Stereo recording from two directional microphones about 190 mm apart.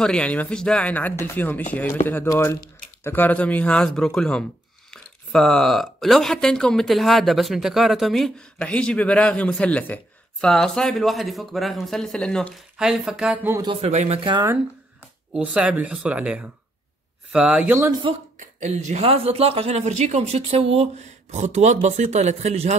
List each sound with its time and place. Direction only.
0.0 s speech: 5° left (ahead or behind)
13.5 s speech: 20° right (ahead or behind)
13.7 s speech: 35° right (ahead or behind)
15.3 s speech: 5° right (ahead or behind)
18.6 s speech: 40° right (ahead or behind)